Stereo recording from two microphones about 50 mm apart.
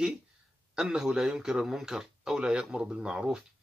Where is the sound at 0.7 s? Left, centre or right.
Centre.